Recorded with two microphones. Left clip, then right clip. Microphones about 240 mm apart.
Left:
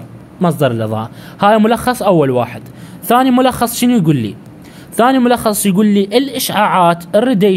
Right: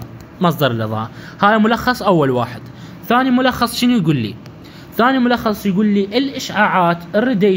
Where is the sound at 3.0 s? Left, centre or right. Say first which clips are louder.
Left 4 dB; left.